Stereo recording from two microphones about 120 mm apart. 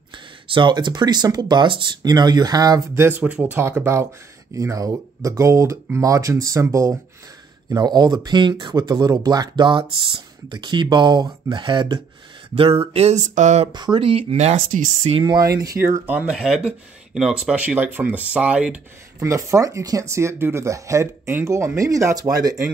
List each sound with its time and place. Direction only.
0.1 s speech: 40° right (ahead or behind)
3.0 s speech: 15° right (ahead or behind); by 12.0 s 40° right (ahead or behind)
12.5 s a sound: 50° right (ahead or behind); by 13.7 s 80° right
13.7 s speech: 35° right (ahead or behind)
15.3 s speech: 30° right (ahead or behind)
15.8 s speech: 15° right (ahead or behind)
19.2 s speech: 25° right (ahead or behind)